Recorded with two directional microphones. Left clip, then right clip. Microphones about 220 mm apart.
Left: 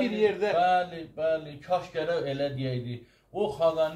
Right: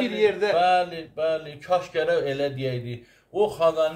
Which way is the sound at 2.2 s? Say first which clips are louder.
Right 4 dB; 45° right (ahead or behind).